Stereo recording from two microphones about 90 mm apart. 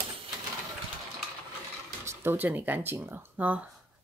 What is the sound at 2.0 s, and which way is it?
Speech, 25° right (ahead or behind).